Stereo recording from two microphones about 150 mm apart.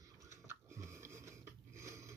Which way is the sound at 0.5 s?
20° right (ahead or behind).